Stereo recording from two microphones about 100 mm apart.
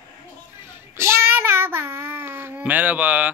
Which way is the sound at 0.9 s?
25° right (ahead or behind).